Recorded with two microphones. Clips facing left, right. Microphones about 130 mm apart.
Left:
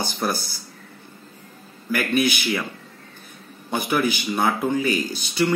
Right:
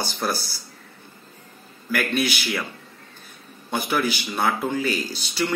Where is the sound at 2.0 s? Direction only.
15° left (ahead or behind).